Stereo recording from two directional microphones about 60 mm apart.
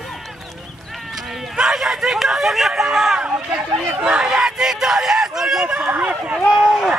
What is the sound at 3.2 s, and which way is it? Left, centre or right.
Speech, centre.